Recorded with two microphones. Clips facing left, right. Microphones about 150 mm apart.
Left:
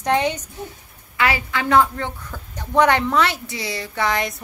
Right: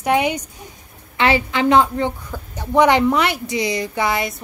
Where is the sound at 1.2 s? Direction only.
25° right (ahead or behind); by 4.3 s 5° right (ahead or behind).